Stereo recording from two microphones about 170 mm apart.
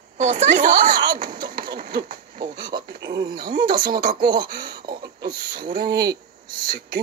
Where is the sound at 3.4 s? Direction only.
60° right (ahead or behind).